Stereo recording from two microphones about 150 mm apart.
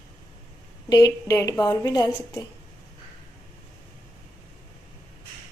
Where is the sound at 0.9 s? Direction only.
25° left (ahead or behind).